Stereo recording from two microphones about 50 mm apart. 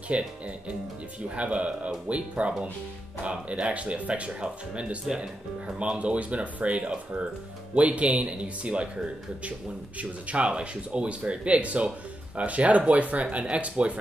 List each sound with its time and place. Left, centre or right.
0.1 s speech: right
1.3 s speech: right
3.5 s speech: right